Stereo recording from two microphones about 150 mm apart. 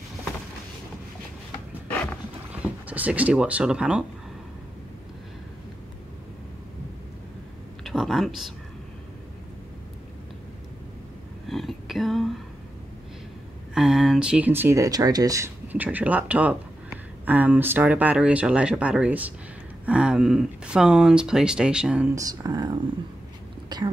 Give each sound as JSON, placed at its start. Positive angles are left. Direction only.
{"t": 1.9, "sound": "dog", "side_deg": 10}
{"t": 2.9, "sound": "speech", "side_deg": -10}
{"t": 7.8, "sound": "speech", "side_deg": 0}
{"t": 11.4, "sound": "a sound", "side_deg": 0}
{"t": 13.7, "sound": "speech", "side_deg": -5}
{"t": 22.1, "sound": "speech", "side_deg": -25}